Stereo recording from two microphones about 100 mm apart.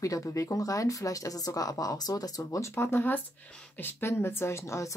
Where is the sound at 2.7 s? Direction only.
25° left (ahead or behind).